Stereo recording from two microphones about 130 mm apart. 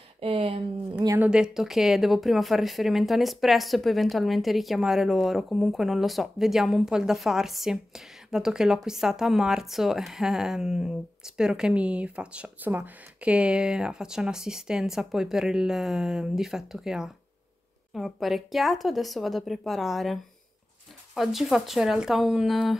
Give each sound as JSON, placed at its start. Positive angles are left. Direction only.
{"t": 0.2, "sound": "speech", "side_deg": -45}
{"t": 1.2, "sound": "speech", "side_deg": -5}